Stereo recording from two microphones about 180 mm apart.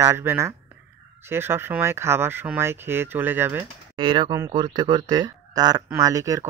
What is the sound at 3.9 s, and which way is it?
Speech, 25° right (ahead or behind).